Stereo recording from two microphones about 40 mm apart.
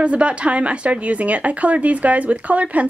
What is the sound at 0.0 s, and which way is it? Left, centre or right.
A woman's voice, right.